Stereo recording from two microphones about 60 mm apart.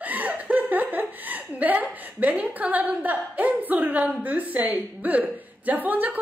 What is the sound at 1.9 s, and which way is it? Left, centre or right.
A woman's voice, right.